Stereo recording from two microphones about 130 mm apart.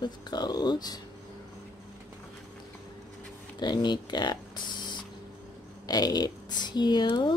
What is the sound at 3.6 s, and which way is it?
Speech, 35° left (ahead or behind).